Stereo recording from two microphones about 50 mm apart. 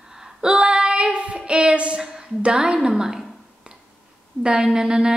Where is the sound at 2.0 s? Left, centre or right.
Centre.